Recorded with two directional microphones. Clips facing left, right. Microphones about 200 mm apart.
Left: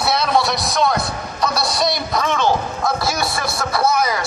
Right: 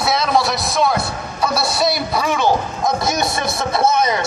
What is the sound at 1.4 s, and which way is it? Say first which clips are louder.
A man's voice: right 2 dB; 5° right (ahead or behind).